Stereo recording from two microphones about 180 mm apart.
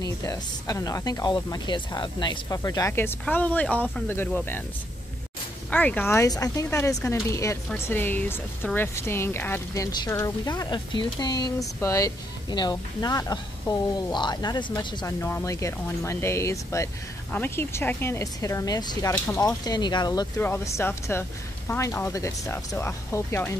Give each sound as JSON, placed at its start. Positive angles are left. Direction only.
{"t": 0.0, "sound": "speech", "side_deg": 20}
{"t": 5.7, "sound": "speech", "side_deg": 10}
{"t": 20.3, "sound": "speech", "side_deg": 10}